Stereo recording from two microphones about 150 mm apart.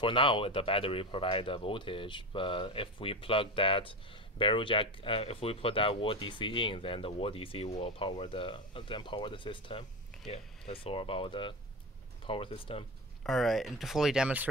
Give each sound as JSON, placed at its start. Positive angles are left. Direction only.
{"t": 0.0, "sound": "speech", "side_deg": 35}
{"t": 13.2, "sound": "speech", "side_deg": 0}